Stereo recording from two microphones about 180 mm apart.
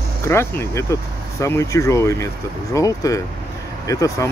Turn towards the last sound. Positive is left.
turn(degrees=20)  # may be behind; listen again after turning